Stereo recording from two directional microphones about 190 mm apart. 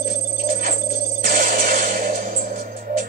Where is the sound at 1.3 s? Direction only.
45° right (ahead or behind).